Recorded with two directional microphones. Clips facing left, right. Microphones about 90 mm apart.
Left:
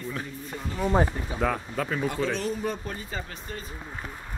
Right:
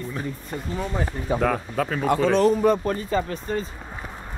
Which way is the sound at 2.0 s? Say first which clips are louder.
Right 13 dB; 60° right (ahead or behind).